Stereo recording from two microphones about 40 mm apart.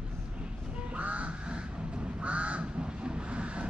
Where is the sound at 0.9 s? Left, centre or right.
Right.